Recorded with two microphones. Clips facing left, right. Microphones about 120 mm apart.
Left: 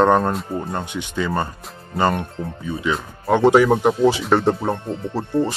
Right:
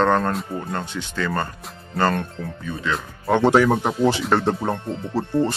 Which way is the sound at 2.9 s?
Centre (ahead or behind).